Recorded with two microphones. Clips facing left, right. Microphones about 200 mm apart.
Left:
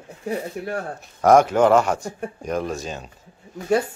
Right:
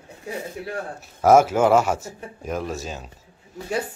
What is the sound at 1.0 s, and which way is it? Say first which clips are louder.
A man's voice: even; 5° right (ahead or behind).